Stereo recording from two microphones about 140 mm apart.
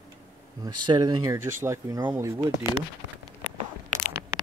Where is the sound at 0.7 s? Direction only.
30° right (ahead or behind).